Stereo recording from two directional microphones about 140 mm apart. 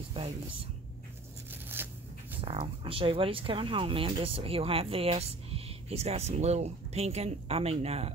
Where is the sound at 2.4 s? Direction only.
40° right (ahead or behind).